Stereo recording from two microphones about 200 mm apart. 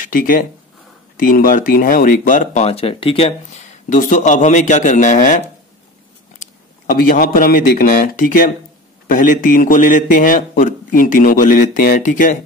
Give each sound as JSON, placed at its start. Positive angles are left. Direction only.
{"t": 0.1, "sound": "speech", "side_deg": 45}
{"t": 6.4, "sound": "speech", "side_deg": 45}